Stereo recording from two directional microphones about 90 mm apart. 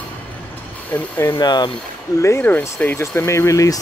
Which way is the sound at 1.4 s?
50° left (ahead or behind).